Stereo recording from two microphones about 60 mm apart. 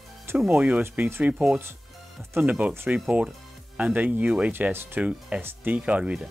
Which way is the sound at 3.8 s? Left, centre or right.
Right.